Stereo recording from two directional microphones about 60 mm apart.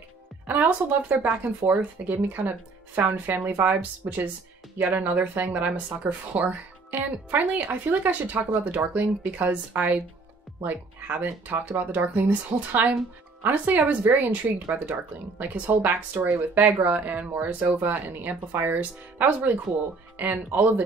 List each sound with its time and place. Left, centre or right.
0.5 s speech: right